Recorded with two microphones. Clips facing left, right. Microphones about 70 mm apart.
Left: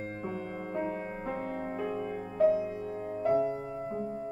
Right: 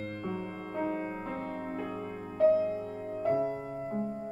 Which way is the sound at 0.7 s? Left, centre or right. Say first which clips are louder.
Right 2 dB; centre.